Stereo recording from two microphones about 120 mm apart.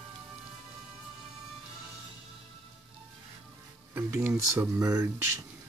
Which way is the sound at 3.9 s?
15° right (ahead or behind).